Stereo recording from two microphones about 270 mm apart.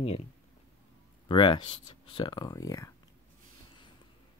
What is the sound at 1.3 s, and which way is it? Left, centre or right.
Speech, centre.